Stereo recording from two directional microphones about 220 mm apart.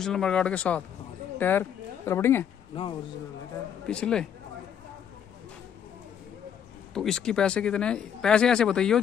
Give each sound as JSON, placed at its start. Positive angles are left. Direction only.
{"t": 0.0, "sound": "a woman's voice", "side_deg": 5}
{"t": 2.7, "sound": "a man's voice", "side_deg": 25}
{"t": 3.8, "sound": "speech", "side_deg": 5}
{"t": 6.9, "sound": "speech", "side_deg": 0}